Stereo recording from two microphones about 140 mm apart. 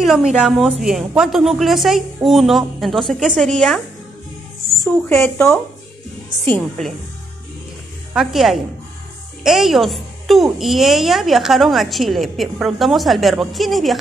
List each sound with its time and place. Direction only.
0.0 s a woman's voice: centre (ahead or behind)
5.1 s speech: 15° left (ahead or behind)
8.1 s a woman's voice: 5° right (ahead or behind)